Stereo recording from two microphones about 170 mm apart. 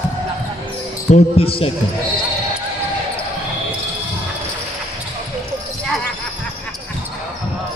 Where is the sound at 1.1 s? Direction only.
35° left (ahead or behind).